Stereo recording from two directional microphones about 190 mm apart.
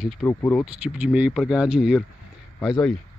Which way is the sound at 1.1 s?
10° right (ahead or behind).